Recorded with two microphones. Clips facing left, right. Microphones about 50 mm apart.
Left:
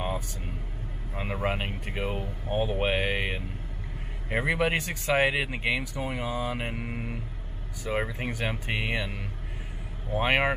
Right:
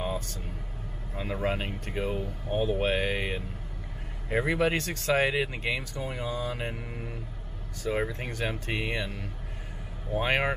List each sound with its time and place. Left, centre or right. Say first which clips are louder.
1.1 s speech: even; left
7.8 s speech: even; centre
10.1 s speech: left 2 dB; centre